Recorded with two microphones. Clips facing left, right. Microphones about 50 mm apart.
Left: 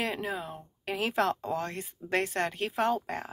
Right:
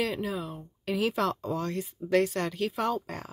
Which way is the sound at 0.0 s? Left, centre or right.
Left.